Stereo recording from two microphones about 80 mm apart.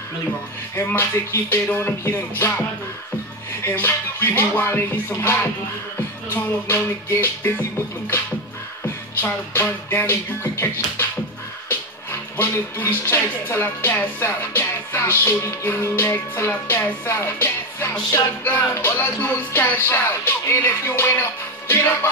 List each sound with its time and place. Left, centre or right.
0.7 s speech: left
3.6 s speech: left
8.8 s music: left
12.1 s speech: left